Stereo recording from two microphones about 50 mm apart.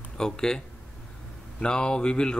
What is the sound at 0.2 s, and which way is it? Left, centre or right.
Speech, centre.